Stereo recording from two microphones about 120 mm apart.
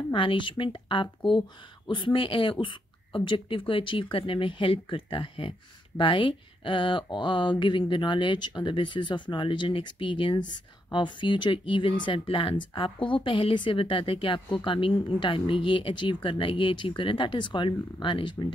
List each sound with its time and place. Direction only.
0.1 s speech: 45° left (ahead or behind)